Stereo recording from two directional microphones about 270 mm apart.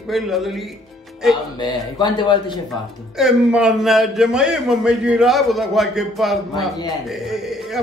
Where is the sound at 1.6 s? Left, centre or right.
Centre.